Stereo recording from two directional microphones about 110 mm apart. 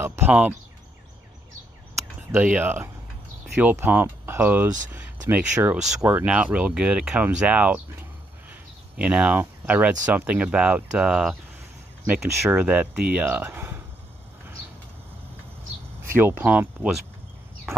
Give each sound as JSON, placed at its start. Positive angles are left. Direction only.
{"t": 0.0, "sound": "a sound", "side_deg": -20}
{"t": 2.3, "sound": "speech", "side_deg": -15}
{"t": 16.0, "sound": "speech", "side_deg": -20}